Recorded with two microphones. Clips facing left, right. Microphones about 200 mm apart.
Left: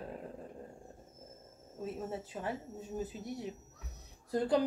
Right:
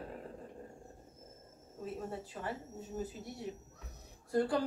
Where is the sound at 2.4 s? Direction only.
20° left (ahead or behind).